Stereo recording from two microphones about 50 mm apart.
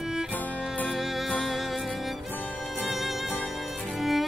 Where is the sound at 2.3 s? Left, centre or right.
Left.